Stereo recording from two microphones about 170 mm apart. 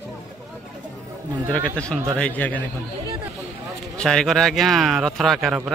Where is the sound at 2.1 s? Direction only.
10° left (ahead or behind).